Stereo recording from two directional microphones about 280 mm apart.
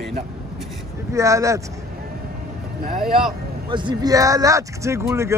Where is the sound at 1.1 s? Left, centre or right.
Centre.